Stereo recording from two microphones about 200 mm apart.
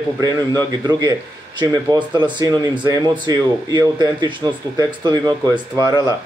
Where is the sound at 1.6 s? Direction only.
20° right (ahead or behind).